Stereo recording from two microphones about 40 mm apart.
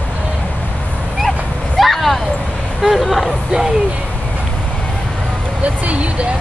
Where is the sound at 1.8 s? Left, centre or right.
Centre.